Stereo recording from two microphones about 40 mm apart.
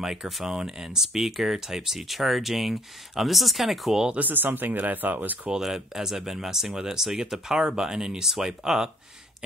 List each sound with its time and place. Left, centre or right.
0.0 s speech: centre
4.2 s speech: right
5.6 s speech: centre